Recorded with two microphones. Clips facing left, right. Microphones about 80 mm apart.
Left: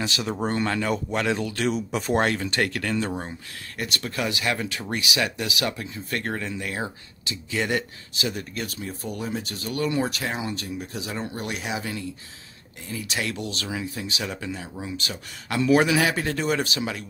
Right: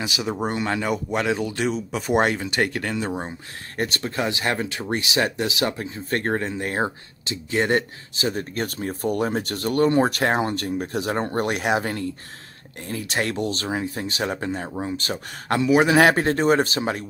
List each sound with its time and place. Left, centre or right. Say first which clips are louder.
0.0 s speech: right 1 dB; centre
1.7 s speech: even; centre
2.0 s speech: right 3 dB; centre
3.7 s speech: right 4 dB; right
15.6 s speech: right 1 dB; centre
15.9 s speech: right 6 dB; right